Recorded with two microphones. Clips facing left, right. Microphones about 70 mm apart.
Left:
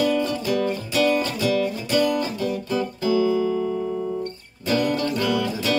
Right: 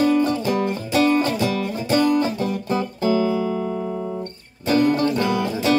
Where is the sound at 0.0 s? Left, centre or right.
Right.